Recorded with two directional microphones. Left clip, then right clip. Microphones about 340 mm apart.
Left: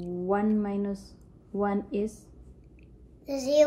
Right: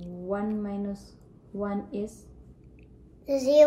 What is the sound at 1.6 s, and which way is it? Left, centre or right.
Speech, left.